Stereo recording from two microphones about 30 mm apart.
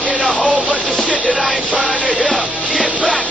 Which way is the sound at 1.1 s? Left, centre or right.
Right.